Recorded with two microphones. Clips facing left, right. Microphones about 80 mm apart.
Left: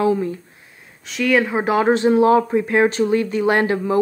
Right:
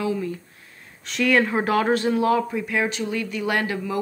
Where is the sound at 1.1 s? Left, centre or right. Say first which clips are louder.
Left 2 dB; centre.